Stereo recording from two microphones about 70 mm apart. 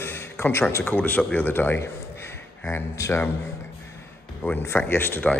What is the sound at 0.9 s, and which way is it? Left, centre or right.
Speech, left.